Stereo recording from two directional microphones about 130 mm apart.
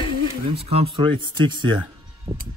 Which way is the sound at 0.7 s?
45° right (ahead or behind).